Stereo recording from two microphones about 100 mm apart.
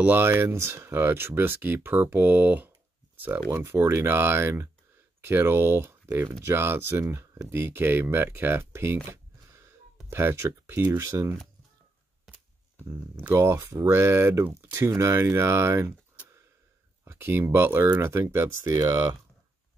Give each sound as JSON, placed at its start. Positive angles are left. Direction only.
{"t": 0.0, "sound": "speech", "side_deg": -20}
{"t": 12.3, "sound": "a sound", "side_deg": -5}
{"t": 12.8, "sound": "speech", "side_deg": -25}
{"t": 17.0, "sound": "speech", "side_deg": -20}